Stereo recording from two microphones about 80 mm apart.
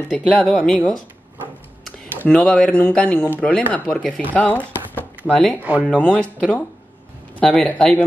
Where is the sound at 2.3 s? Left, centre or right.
Centre.